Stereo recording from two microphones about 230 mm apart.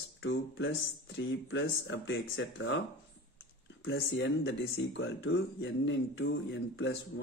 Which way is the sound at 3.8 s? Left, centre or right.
Left.